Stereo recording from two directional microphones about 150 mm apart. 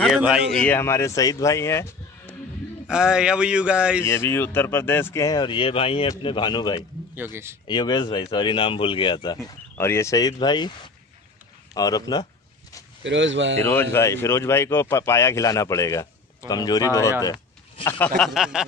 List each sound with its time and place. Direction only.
0.5 s speech: 10° left (ahead or behind)
2.9 s speech: 5° right (ahead or behind)
4.0 s speech: 15° left (ahead or behind)
7.2 s speech: 15° right (ahead or behind)
7.6 s speech: 30° left (ahead or behind)
9.8 s speech: 15° left (ahead or behind)
11.7 s speech: 25° left (ahead or behind)
13.6 s speech: 15° left (ahead or behind)
17.8 s a sound: 15° left (ahead or behind); by 18.7 s 5° right (ahead or behind)